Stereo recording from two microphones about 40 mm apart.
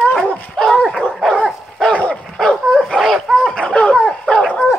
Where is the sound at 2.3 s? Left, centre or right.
Centre.